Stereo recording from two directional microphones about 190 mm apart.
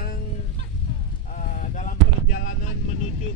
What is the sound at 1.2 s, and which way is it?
Speech, 45° left (ahead or behind).